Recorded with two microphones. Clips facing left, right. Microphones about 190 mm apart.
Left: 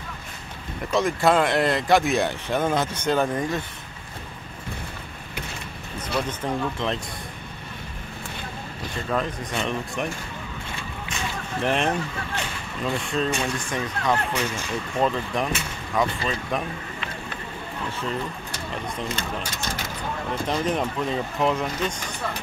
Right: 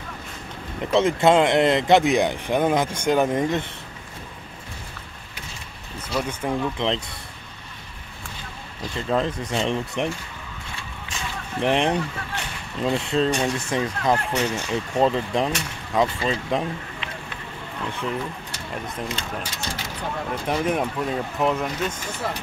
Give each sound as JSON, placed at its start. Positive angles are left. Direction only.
{"t": 0.9, "sound": "speech", "side_deg": -20}
{"t": 5.9, "sound": "speech", "side_deg": -10}
{"t": 9.1, "sound": "speech", "side_deg": -25}
{"t": 11.6, "sound": "speech", "side_deg": -15}
{"t": 19.1, "sound": "speech", "side_deg": 45}
{"t": 20.4, "sound": "speech", "side_deg": -10}